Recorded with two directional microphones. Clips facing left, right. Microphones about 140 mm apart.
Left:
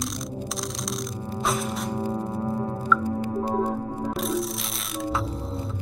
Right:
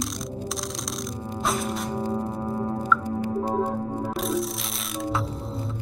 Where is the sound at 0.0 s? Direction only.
Centre (ahead or behind).